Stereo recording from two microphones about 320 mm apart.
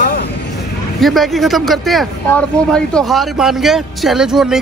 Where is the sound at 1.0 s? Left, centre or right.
Centre.